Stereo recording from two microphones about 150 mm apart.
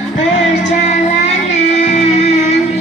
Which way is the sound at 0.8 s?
50° left (ahead or behind).